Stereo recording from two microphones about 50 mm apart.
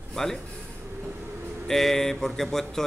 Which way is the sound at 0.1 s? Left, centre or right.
Centre.